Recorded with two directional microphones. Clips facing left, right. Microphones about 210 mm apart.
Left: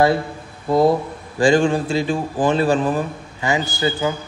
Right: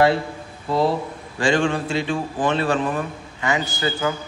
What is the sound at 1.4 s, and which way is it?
A man's voice, 35° left (ahead or behind).